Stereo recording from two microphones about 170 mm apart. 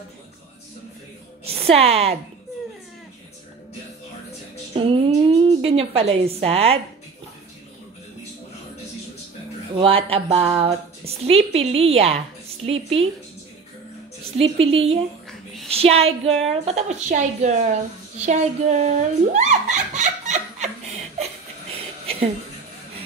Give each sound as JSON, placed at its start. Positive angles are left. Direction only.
{"t": 1.4, "sound": "a woman's voice", "side_deg": -35}
{"t": 4.7, "sound": "a sound", "side_deg": -35}
{"t": 6.2, "sound": "a woman's voice", "side_deg": -35}
{"t": 9.8, "sound": "a woman's voice", "side_deg": -35}
{"t": 14.3, "sound": "a woman's voice", "side_deg": -35}
{"t": 18.2, "sound": "a sound", "side_deg": -45}